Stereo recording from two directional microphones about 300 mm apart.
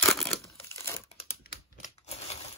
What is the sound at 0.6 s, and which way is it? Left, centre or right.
Crumpling, centre.